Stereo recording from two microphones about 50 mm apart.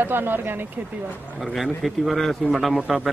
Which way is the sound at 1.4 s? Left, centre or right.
Centre.